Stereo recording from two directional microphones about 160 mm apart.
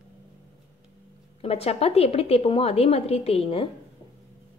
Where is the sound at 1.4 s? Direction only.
40° left (ahead or behind).